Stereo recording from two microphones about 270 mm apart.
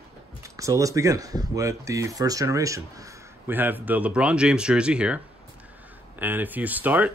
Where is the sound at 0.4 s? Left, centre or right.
Centre.